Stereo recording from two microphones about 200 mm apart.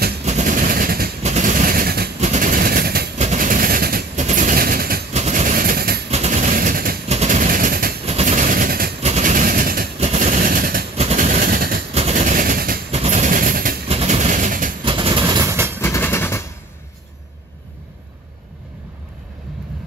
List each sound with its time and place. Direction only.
0.2 s vehicle: 35° right (ahead or behind)
2.1 s vehicle: 35° right (ahead or behind)
3.2 s a sound: 40° right (ahead or behind)
5.1 s vehicle: 35° right (ahead or behind)
6.0 s machine gun: 35° right (ahead or behind)
7.1 s a sound: 35° right (ahead or behind)
8.0 s vehicle: 30° right (ahead or behind)
9.0 s vehicle: 35° right (ahead or behind)
11.9 s vehicle: 35° right (ahead or behind)
12.9 s vehicle: 35° right (ahead or behind)
13.8 s vehicle: 30° right (ahead or behind)
14.8 s train: 25° right (ahead or behind)
15.8 s train: 10° left (ahead or behind)